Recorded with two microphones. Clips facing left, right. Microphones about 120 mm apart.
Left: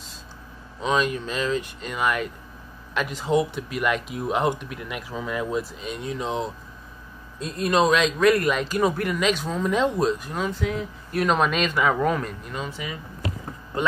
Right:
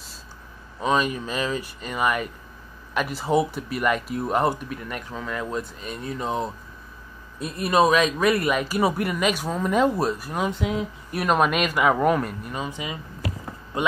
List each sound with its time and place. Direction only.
0.7 s a man's voice: 10° right (ahead or behind); by 5.6 s 15° left (ahead or behind)
5.6 s a man's voice: centre (ahead or behind); by 13.9 s 20° right (ahead or behind)